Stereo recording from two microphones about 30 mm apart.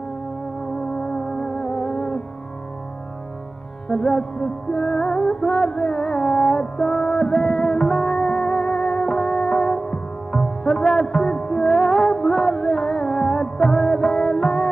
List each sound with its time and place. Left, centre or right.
0.7 s music: left
3.9 s music: left
11.7 s music: centre